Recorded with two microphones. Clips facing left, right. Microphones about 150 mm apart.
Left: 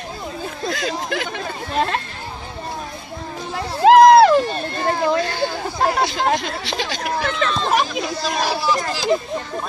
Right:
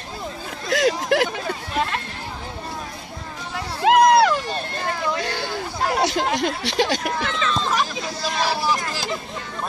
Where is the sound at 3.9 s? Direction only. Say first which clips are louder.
Left 6 dB; 30° left (ahead or behind).